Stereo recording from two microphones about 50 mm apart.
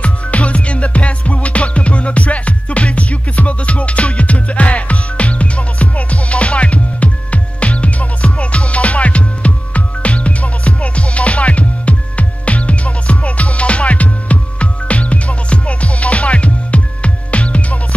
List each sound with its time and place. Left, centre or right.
0.0 s music: left